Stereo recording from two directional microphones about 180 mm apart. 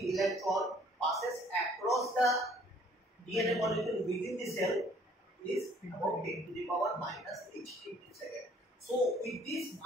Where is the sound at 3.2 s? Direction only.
Centre (ahead or behind).